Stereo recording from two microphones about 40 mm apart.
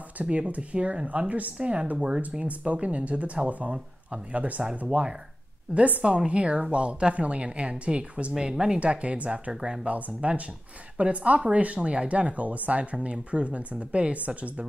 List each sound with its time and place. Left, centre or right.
0.2 s speech: right
2.4 s speech: right
5.8 s speech: right
6.0 s speech: right
8.4 s speech: centre
8.7 s speech: right
9.5 s speech: centre
9.8 s speech: right